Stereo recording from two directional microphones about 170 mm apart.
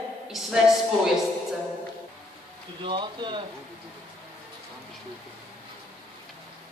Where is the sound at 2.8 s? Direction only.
25° right (ahead or behind).